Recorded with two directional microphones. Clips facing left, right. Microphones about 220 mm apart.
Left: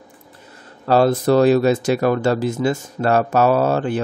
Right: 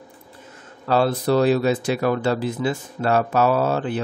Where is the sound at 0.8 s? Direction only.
45° left (ahead or behind).